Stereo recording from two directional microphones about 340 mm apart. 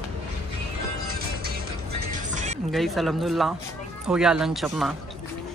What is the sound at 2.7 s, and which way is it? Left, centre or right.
Speech, centre.